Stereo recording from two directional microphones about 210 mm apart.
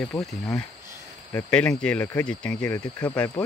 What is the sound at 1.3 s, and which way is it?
Speech, 5° left (ahead or behind).